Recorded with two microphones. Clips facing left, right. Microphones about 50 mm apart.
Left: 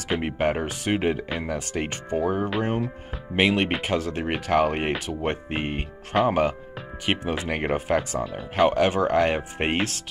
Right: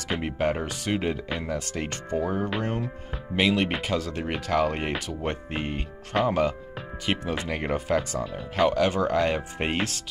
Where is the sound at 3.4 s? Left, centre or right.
Left.